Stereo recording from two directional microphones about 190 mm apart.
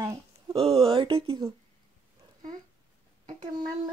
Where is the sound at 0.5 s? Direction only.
30° right (ahead or behind).